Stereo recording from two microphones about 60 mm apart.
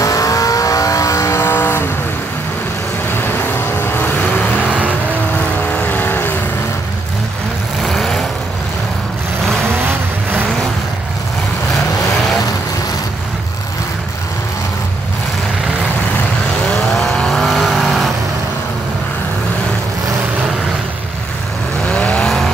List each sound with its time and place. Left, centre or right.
0.0 s vehicle: left
3.1 s vehicle: left
4.6 s vehicle: right
5.7 s vehicle: left
7.8 s vehicle: centre
17.0 s vehicle: centre
21.8 s vehicle: centre